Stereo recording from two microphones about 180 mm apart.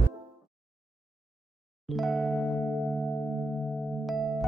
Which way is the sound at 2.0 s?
Centre (ahead or behind).